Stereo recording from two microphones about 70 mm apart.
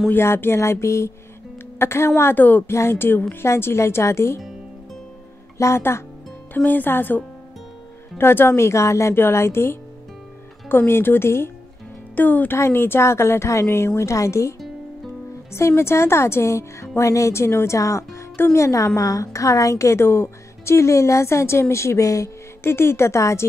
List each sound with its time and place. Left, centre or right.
0.1 s speech: left
2.3 s speech: left
2.7 s speech: left
3.4 s speech: left
5.6 s speech: left
6.5 s speech: left
12.2 s speech: left
12.5 s speech: left
15.5 s a woman's voice: left
22.6 s speech: left